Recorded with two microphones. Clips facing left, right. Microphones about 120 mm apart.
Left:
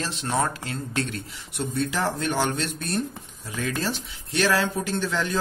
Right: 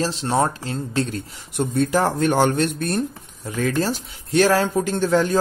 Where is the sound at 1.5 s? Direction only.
50° right (ahead or behind).